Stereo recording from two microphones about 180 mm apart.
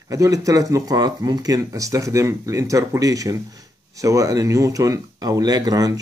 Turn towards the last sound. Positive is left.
turn(degrees=-20)  # may be behind; listen again after turning